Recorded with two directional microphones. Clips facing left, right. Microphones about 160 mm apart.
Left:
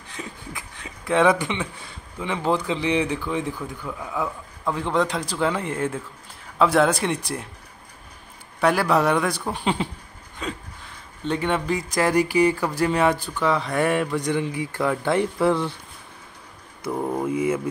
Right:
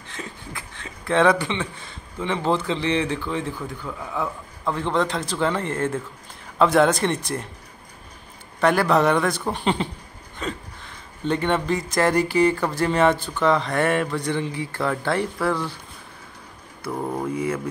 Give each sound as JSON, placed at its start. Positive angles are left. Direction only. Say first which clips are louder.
{"t": 0.2, "sound": "a sound", "louder": "even", "side_deg": 15}
{"t": 1.4, "sound": "speech", "louder": "right 1 dB", "side_deg": 15}
{"t": 8.5, "sound": "a man's voice", "louder": "right 1 dB", "side_deg": 5}
{"t": 11.2, "sound": "speech", "louder": "right 1 dB", "side_deg": 5}
{"t": 16.9, "sound": "speech", "louder": "left 2 dB", "side_deg": 5}